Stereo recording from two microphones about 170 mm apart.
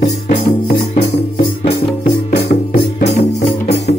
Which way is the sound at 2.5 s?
65° left (ahead or behind).